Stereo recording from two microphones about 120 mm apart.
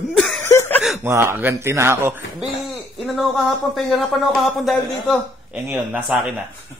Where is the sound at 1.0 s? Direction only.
20° right (ahead or behind).